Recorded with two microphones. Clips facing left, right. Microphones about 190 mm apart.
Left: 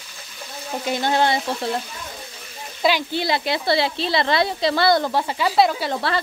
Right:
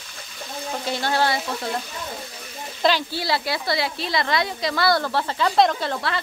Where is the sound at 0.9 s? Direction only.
20° left (ahead or behind).